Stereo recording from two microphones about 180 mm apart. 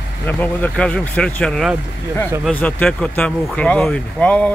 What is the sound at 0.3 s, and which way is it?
Speech, 10° left (ahead or behind).